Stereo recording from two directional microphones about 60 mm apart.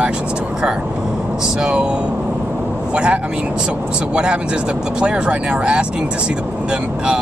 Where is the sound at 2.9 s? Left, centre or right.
Centre.